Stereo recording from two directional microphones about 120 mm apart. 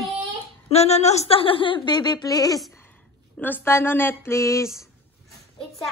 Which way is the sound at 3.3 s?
15° left (ahead or behind).